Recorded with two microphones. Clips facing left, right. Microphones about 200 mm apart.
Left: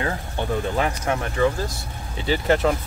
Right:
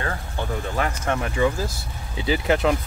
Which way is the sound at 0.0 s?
20° left (ahead or behind).